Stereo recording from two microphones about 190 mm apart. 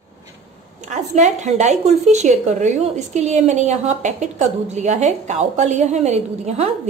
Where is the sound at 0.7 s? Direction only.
40° right (ahead or behind).